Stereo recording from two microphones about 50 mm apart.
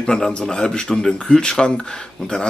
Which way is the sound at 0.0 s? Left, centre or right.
Centre.